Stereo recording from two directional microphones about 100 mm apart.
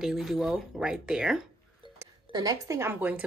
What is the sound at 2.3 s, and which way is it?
Speech, 35° right (ahead or behind).